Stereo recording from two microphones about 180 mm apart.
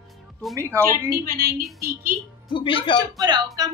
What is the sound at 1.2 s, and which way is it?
Speech, 55° right (ahead or behind).